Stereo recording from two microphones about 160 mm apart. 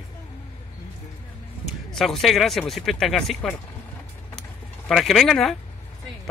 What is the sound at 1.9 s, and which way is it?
Speech, centre (ahead or behind).